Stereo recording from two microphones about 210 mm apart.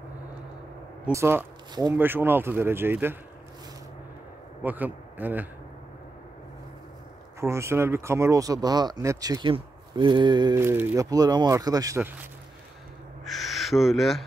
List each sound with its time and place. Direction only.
1.0 s speech: 10° right (ahead or behind)
4.6 s speech: 10° right (ahead or behind)
7.3 s speech: 15° right (ahead or behind)
13.2 s a sound: centre (ahead or behind)